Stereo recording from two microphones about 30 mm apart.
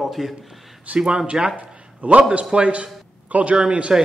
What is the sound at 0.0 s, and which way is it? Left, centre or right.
Speech, centre.